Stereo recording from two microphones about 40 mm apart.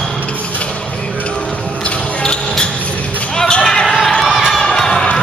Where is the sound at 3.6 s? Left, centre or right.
Centre.